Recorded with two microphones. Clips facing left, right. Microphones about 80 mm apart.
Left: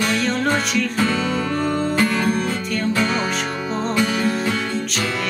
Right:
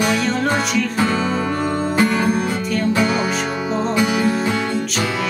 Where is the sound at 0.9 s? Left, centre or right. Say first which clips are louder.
Right 2 dB; centre.